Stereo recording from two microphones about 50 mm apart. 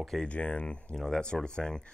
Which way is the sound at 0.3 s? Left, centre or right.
Left.